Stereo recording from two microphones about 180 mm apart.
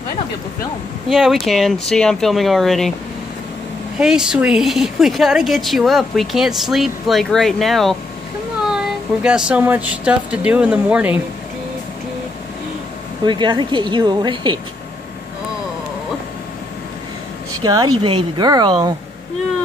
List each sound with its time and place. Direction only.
1.0 s a woman's voice: centre (ahead or behind)
4.0 s a woman's voice: 5° right (ahead or behind)
13.2 s speech: 25° right (ahead or behind)
17.6 s speech: 20° right (ahead or behind)